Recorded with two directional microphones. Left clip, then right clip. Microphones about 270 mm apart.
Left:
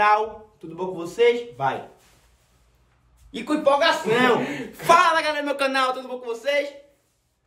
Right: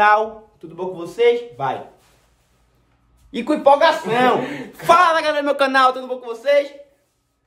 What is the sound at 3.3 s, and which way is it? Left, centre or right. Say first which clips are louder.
Speech: right 6 dB; right.